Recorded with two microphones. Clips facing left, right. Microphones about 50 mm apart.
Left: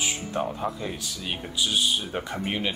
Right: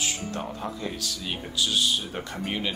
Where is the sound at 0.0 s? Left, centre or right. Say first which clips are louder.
Left 3 dB; centre.